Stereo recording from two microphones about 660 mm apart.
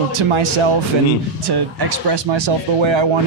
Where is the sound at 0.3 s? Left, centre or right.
Right.